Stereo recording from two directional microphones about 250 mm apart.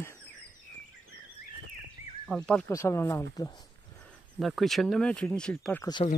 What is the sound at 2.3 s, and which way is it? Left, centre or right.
Speech, centre.